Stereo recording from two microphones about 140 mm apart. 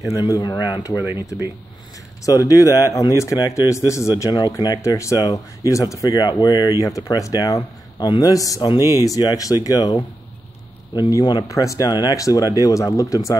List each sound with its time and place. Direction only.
0.1 s speech: 25° left (ahead or behind)
2.2 s speech: 25° left (ahead or behind)
11.0 s speech: 30° left (ahead or behind)